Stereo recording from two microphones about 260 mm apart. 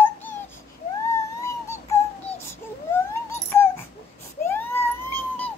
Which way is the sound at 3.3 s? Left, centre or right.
Centre.